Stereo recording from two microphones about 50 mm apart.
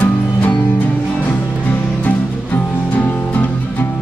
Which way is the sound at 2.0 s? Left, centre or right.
Left.